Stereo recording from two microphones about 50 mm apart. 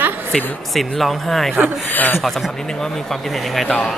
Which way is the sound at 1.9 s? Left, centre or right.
Left.